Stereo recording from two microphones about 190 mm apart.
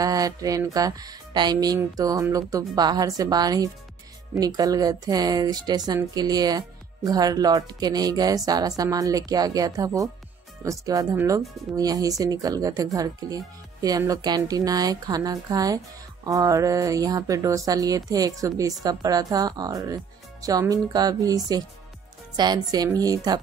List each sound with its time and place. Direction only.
0.0 s speech: 20° right (ahead or behind)
22.4 s speech: 20° right (ahead or behind)